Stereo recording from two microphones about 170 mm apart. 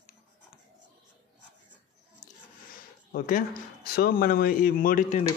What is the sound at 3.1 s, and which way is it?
A man's voice, 55° left (ahead or behind).